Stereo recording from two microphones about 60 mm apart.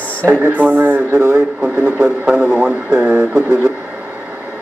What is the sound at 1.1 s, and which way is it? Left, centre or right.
Speech, right.